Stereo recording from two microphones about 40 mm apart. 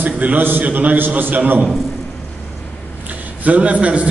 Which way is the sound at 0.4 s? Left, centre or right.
Right.